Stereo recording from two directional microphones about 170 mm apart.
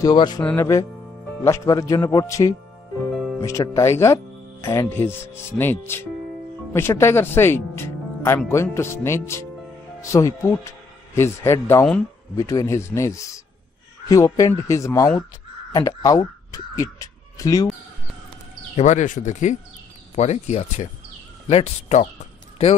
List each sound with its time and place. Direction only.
0.0 s speech: 25° left (ahead or behind)
0.4 s speech: 10° left (ahead or behind)
18.8 s speech: 45° left (ahead or behind)